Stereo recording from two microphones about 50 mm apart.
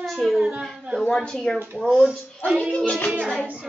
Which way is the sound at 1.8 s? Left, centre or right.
Centre.